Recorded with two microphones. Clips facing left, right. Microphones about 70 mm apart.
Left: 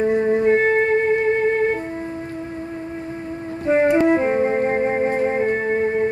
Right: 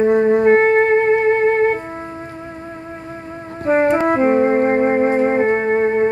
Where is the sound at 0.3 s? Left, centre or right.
Right.